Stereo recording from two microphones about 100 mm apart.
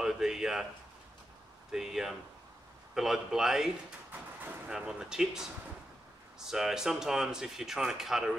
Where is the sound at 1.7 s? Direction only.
5° right (ahead or behind).